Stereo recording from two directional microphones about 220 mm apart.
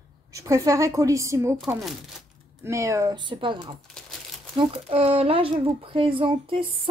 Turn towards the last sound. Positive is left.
turn(degrees=-25)  # may be behind; listen again after turning